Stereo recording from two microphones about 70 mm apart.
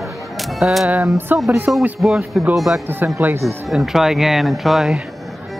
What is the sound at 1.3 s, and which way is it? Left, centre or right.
Speech, right.